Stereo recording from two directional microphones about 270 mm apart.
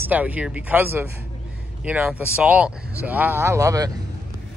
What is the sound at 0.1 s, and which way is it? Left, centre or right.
Speech, centre.